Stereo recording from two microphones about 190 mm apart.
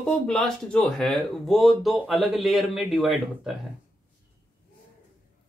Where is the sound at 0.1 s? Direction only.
5° left (ahead or behind).